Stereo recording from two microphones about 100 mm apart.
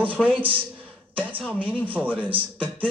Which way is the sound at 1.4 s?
15° left (ahead or behind).